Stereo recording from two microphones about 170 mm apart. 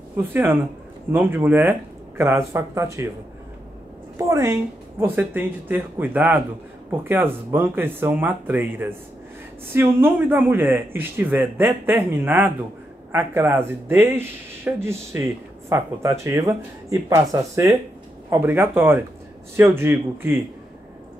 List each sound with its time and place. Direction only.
0.3 s speech: 10° right (ahead or behind)
4.3 s a woman's voice: 20° right (ahead or behind)